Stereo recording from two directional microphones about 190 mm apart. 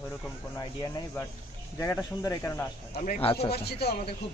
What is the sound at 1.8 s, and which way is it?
Speech, 15° left (ahead or behind).